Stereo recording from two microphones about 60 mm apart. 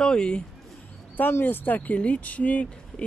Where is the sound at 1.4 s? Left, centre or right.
Left.